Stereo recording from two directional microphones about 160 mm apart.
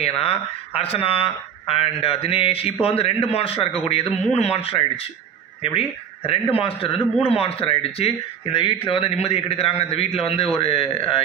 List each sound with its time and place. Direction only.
0.0 s speech: 40° left (ahead or behind)